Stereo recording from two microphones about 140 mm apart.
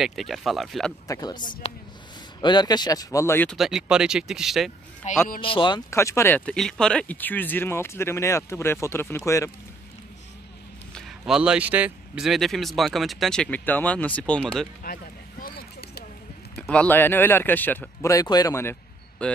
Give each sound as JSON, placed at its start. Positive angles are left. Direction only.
{"t": 0.0, "sound": "speech", "side_deg": 0}
{"t": 1.0, "sound": "speech", "side_deg": 25}
{"t": 3.4, "sound": "speech", "side_deg": 0}
{"t": 5.0, "sound": "speech", "side_deg": 55}
{"t": 5.4, "sound": "speech", "side_deg": 35}
{"t": 5.9, "sound": "speech", "side_deg": 20}
{"t": 11.0, "sound": "a man's voice", "side_deg": 0}
{"t": 12.3, "sound": "speech", "side_deg": 0}
{"t": 15.4, "sound": "a sound", "side_deg": 90}
{"t": 16.5, "sound": "speech", "side_deg": 5}